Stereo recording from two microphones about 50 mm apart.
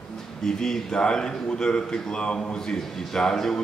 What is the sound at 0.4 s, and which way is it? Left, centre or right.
A man's voice, centre.